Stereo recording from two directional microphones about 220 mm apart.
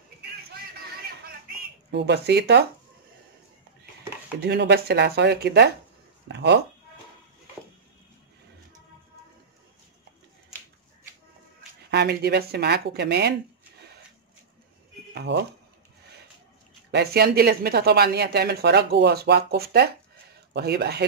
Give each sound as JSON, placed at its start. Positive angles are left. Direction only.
{"t": 1.9, "sound": "speech", "side_deg": -50}
{"t": 4.4, "sound": "speech", "side_deg": -50}
{"t": 11.9, "sound": "speech", "side_deg": -45}
{"t": 15.1, "sound": "speech", "side_deg": -50}
{"t": 16.9, "sound": "speech", "side_deg": -45}